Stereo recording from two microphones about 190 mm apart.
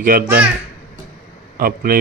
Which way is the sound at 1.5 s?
50° right (ahead or behind).